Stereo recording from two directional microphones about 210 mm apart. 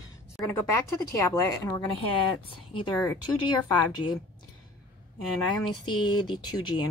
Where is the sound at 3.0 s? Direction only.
15° left (ahead or behind).